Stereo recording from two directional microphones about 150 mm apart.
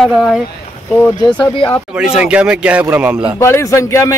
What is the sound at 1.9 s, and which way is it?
Speech, 5° right (ahead or behind).